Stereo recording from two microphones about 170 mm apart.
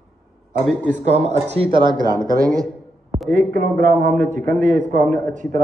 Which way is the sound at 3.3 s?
55° right (ahead or behind).